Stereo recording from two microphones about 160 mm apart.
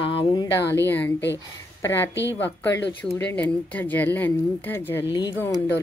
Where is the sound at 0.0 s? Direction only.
35° left (ahead or behind).